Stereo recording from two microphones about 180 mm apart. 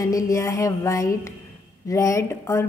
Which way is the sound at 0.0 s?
20° left (ahead or behind).